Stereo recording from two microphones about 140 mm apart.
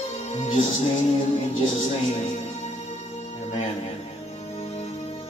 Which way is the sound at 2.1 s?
55° left (ahead or behind).